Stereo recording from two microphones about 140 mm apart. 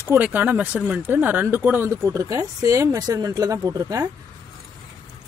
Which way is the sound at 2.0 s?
25° right (ahead or behind).